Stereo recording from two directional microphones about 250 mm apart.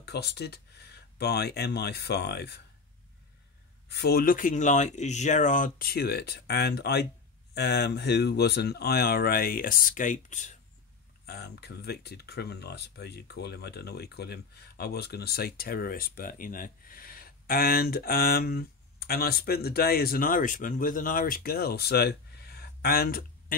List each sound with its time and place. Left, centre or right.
0.0 s speech: left
3.9 s speech: left